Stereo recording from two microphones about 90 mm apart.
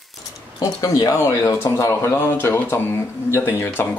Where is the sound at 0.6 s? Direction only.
40° left (ahead or behind).